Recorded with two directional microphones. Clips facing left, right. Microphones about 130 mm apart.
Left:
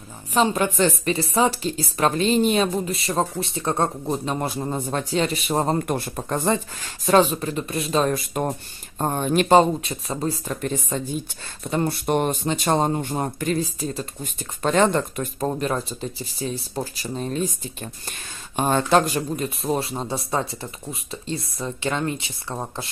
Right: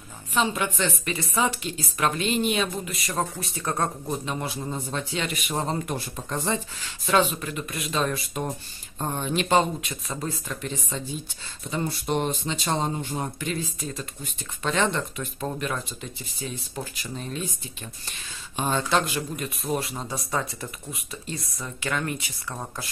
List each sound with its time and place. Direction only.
0.3 s speech: 40° left (ahead or behind)
5.1 s speech: 35° left (ahead or behind); by 6.6 s 55° left (ahead or behind)
7.1 s speech: 35° left (ahead or behind)
11.7 s speech: 55° left (ahead or behind); by 17.6 s 40° left (ahead or behind)
18.6 s speech: 50° left (ahead or behind); by 22.8 s 25° left (ahead or behind)